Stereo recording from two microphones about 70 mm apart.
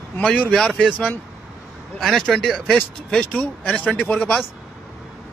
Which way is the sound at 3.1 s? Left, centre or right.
Centre.